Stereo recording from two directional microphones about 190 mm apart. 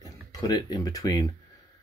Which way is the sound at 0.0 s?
20° left (ahead or behind).